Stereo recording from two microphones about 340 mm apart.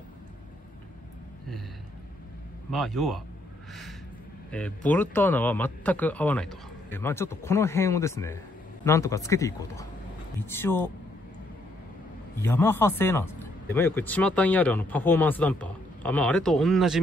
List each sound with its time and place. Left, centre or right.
2.7 s speech: centre
4.5 s speech: centre
12.4 s speech: centre